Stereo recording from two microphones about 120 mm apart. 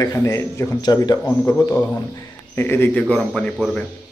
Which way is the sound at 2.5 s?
20° left (ahead or behind).